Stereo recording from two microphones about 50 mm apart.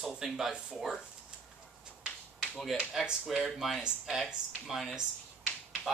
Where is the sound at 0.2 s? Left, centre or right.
Centre.